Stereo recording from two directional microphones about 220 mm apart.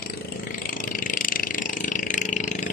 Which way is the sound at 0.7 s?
40° left (ahead or behind).